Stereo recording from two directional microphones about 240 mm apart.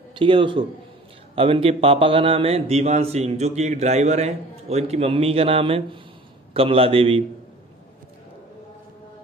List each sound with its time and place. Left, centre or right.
0.1 s a man's voice: right